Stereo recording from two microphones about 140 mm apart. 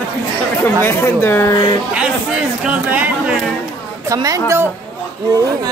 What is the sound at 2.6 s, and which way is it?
Speech, 10° right (ahead or behind).